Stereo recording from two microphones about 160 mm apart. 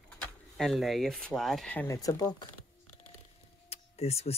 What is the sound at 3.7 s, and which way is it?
Tick-tock, 40° left (ahead or behind).